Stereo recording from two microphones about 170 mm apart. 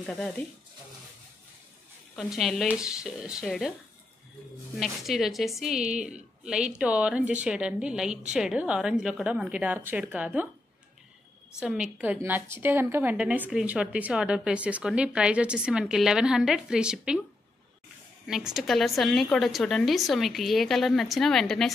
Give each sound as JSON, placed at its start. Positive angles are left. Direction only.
{"t": 0.0, "sound": "a woman's voice", "side_deg": 0}
{"t": 2.1, "sound": "a woman's voice", "side_deg": 0}
{"t": 4.7, "sound": "a woman's voice", "side_deg": 0}
{"t": 11.6, "sound": "a woman's voice", "side_deg": -5}
{"t": 18.2, "sound": "a woman's voice", "side_deg": 0}